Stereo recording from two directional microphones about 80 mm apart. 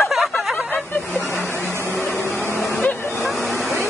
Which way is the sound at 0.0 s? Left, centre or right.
Centre.